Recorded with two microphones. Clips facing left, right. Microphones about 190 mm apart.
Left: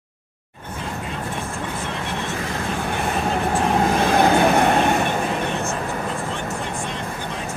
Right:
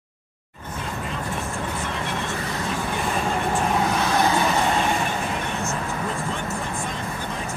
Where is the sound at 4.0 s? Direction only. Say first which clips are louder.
Left 5 dB; 55° left (ahead or behind).